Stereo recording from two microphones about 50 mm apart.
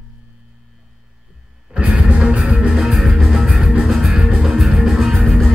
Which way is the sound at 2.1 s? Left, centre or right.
Right.